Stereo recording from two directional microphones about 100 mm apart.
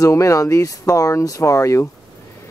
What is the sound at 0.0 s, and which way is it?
Speech, 30° left (ahead or behind).